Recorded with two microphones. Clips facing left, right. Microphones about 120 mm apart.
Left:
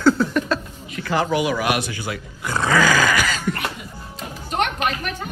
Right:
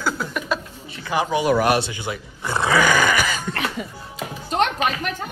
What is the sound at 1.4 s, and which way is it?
Speech, 40° right (ahead or behind).